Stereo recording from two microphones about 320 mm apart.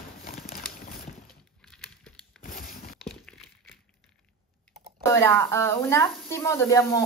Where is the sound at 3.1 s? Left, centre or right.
Centre.